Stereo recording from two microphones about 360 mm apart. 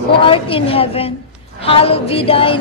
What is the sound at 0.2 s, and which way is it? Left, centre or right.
A woman's voice, centre.